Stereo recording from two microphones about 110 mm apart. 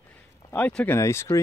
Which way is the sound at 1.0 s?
25° left (ahead or behind).